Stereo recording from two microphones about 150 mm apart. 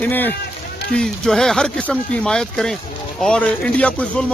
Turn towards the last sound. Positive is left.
turn(degrees=10)  # may be behind; listen again after turning